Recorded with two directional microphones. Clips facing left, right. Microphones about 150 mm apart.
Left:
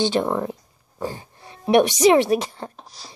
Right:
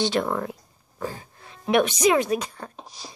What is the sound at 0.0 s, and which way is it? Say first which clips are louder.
Speech: left 3 dB; 20° left (ahead or behind).